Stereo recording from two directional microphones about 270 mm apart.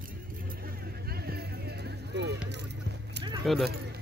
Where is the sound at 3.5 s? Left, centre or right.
Centre.